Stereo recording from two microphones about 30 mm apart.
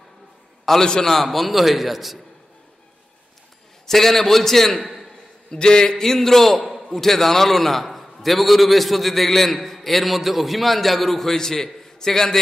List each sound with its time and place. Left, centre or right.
0.7 s a man's voice: centre
3.9 s a man's voice: centre
5.5 s a man's voice: left
6.0 s a man's voice: centre